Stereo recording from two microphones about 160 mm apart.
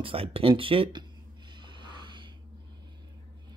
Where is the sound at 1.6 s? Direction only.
30° right (ahead or behind).